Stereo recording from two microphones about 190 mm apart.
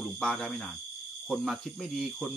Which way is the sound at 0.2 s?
5° left (ahead or behind).